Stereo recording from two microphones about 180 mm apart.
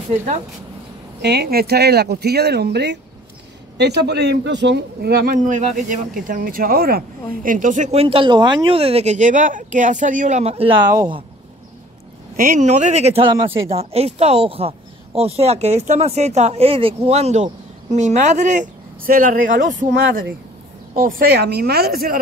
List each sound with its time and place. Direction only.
0.1 s a woman's voice: 40° right (ahead or behind)
1.2 s speech: 65° right (ahead or behind); by 11.1 s 20° right (ahead or behind)
12.4 s a woman's voice: 45° right (ahead or behind)
20.9 s speech: 55° right (ahead or behind)